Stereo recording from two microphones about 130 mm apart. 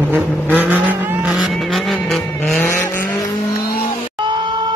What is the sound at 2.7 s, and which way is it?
Vehicle, 20° left (ahead or behind).